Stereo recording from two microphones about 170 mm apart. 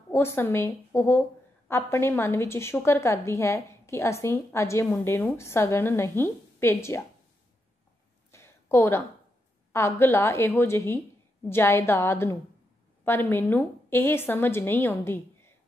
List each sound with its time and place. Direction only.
0.1 s a woman's voice: 15° left (ahead or behind)
8.3 s a sound: 15° left (ahead or behind)
9.7 s a woman's voice: 15° left (ahead or behind)